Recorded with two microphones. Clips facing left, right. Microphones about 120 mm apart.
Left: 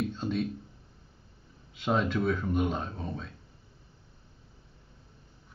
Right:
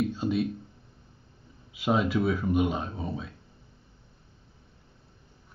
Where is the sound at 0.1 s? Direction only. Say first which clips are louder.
Right 4 dB; 5° right (ahead or behind).